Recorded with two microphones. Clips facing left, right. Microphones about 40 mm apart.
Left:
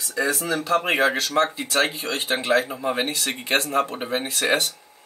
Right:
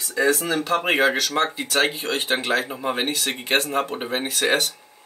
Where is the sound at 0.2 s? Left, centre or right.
Right.